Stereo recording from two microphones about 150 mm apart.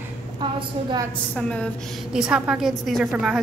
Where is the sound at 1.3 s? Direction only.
10° left (ahead or behind).